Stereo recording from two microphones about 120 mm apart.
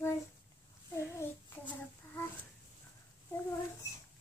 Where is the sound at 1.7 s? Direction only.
20° left (ahead or behind).